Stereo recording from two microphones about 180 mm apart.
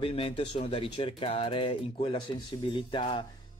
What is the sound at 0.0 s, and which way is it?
Speech, 30° left (ahead or behind).